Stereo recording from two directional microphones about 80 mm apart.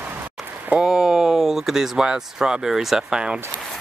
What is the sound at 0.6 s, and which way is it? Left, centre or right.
Speech, centre.